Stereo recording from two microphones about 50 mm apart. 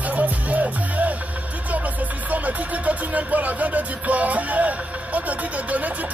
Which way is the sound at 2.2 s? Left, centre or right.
Right.